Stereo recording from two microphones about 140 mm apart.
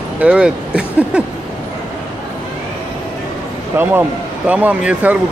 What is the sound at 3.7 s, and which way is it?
Speech, 15° right (ahead or behind).